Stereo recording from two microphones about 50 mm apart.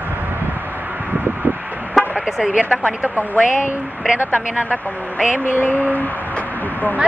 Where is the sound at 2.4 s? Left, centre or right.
Right.